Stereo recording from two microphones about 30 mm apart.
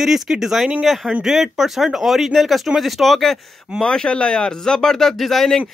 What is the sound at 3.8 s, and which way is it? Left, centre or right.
Speech, left.